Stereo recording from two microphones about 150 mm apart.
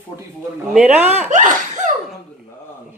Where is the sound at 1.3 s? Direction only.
55° right (ahead or behind).